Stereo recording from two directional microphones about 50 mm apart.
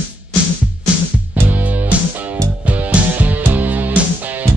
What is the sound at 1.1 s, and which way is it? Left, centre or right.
Music, right.